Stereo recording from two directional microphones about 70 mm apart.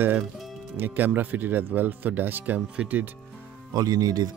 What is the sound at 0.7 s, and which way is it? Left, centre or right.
Speech, right.